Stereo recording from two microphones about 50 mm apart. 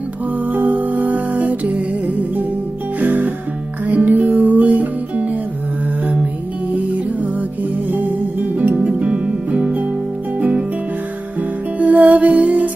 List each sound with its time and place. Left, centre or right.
0.5 s music: right
6.7 s music: right
8.7 s music: right
11.8 s music: right